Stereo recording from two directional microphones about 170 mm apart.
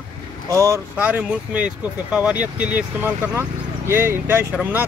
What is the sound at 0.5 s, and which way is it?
Speech, 20° right (ahead or behind).